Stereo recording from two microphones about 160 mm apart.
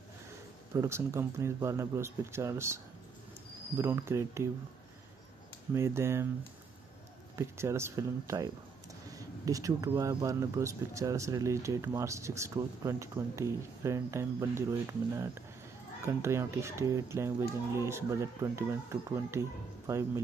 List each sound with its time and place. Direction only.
0.7 s speech: 15° right (ahead or behind)
5.8 s speech: 15° right (ahead or behind)
7.3 s speech: 15° right (ahead or behind)